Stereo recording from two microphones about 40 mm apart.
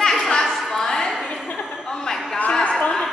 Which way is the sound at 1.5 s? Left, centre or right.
Centre.